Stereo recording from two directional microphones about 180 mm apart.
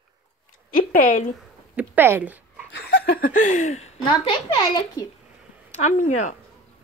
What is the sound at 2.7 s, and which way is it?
Laughter, 60° left (ahead or behind).